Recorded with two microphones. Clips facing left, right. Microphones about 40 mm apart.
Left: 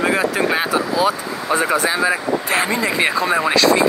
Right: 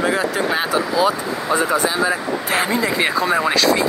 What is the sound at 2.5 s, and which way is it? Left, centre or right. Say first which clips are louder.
Speech: right 1 dB; centre.